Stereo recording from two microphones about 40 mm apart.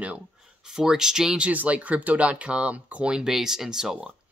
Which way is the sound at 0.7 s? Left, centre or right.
Centre.